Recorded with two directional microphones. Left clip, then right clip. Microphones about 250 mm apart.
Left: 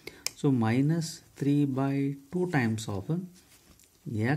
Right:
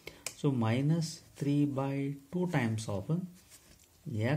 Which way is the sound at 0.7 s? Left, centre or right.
Left.